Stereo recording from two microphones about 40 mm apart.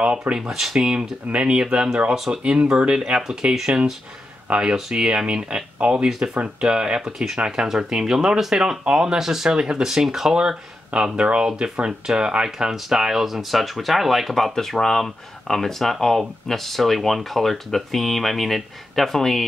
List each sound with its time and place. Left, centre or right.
0.0 s speech: right
0.5 s speech: centre
0.9 s speech: right
2.1 s speech: centre
2.4 s speech: right
3.1 s speech: centre
4.7 s speech: centre
6.0 s speech: centre
10.9 s speech: right; by 19.4 s centre